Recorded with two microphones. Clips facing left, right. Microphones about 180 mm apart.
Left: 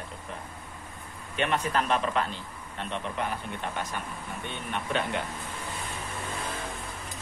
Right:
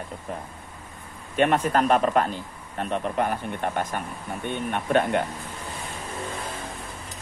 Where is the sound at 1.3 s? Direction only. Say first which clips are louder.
Right 7 dB; 50° right (ahead or behind).